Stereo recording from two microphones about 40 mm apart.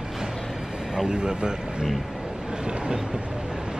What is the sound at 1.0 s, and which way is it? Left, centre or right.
Speech, centre.